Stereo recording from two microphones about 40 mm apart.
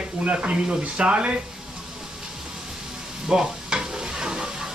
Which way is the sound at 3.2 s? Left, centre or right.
Centre.